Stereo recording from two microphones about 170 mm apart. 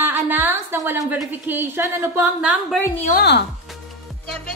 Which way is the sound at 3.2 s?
80° left.